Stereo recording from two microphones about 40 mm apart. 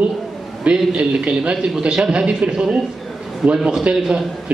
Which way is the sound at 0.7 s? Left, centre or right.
Right.